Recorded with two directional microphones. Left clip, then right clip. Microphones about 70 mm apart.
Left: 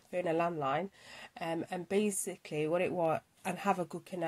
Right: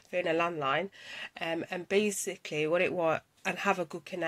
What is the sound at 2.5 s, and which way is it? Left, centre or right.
Speech, left.